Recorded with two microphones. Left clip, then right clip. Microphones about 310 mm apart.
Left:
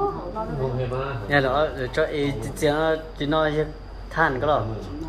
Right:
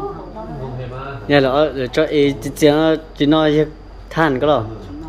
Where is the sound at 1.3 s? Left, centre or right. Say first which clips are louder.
Right 7 dB; right.